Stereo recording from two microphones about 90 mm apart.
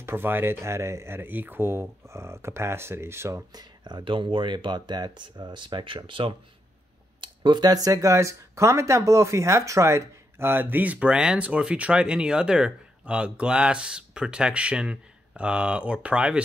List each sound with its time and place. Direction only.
0.0 s speech: 25° right (ahead or behind)
3.5 s speech: 55° right (ahead or behind)
7.2 s a sound: 65° right (ahead or behind)
7.6 s speech: 40° right (ahead or behind); by 16.4 s 10° right (ahead or behind)